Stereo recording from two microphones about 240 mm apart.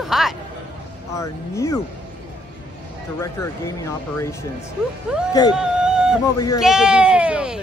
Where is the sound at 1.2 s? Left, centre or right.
Centre.